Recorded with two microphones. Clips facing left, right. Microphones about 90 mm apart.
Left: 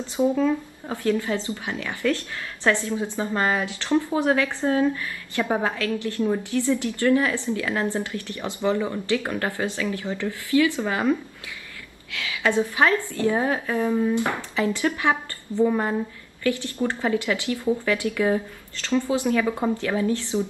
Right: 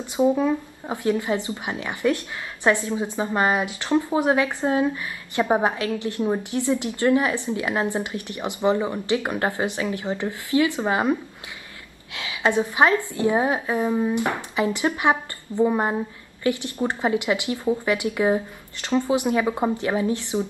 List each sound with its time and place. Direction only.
0.0 s speech: 15° right (ahead or behind)